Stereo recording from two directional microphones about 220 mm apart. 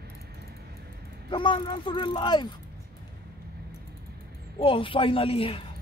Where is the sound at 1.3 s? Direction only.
20° left (ahead or behind).